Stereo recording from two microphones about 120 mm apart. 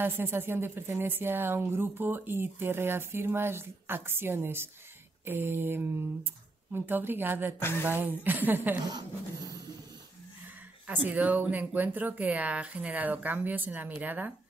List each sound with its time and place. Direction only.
0.0 s a woman's voice: 20° right (ahead or behind)
7.5 s speech: 20° left (ahead or behind)
7.8 s speech: 15° right (ahead or behind)
10.9 s speech: 15° right (ahead or behind)